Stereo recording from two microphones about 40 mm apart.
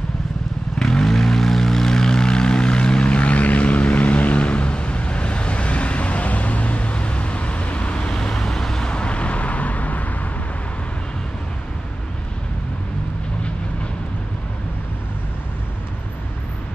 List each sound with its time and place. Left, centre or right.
0.7 s vehicle: centre; by 8.1 s left
8.1 s vehicle: centre; by 10.0 s left